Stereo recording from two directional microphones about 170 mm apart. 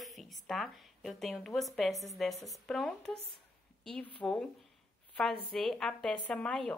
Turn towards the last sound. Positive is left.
turn(degrees=5)  # may be behind; listen again after turning